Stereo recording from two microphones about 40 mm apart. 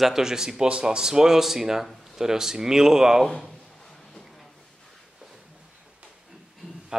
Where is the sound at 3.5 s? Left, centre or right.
Centre.